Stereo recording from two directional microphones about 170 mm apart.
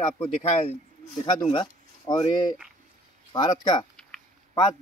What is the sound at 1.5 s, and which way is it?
Speech, 30° left (ahead or behind).